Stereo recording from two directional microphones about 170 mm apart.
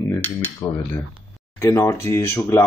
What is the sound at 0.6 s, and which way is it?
Speech, 5° left (ahead or behind).